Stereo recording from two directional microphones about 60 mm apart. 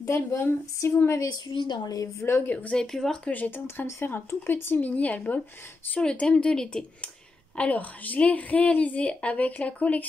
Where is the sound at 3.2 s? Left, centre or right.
Left.